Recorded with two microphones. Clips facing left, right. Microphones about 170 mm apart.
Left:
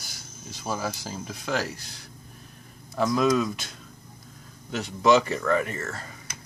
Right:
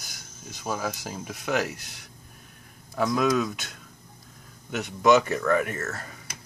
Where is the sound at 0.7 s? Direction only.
Centre (ahead or behind).